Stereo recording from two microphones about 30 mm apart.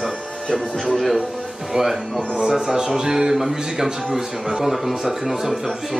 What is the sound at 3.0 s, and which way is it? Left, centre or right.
Speech, centre.